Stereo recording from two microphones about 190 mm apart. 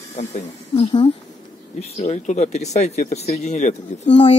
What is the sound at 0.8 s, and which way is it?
Speech, 30° left (ahead or behind).